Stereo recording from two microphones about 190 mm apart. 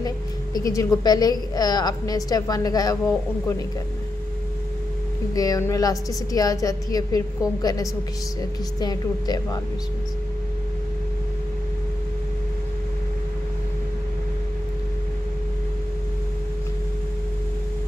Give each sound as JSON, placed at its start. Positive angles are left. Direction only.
{"t": 0.7, "sound": "a woman's voice", "side_deg": 15}
{"t": 5.3, "sound": "a woman's voice", "side_deg": 20}